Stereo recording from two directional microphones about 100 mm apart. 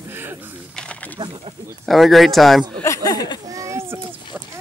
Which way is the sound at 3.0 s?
40° left (ahead or behind).